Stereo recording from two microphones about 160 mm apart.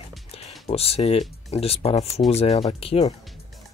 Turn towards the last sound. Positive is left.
turn(degrees=40)  # may be behind; listen again after turning